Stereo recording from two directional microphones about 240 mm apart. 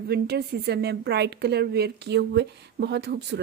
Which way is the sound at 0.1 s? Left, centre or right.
Right.